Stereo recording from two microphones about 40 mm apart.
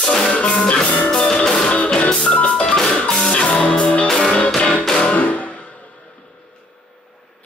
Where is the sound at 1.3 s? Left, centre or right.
Centre.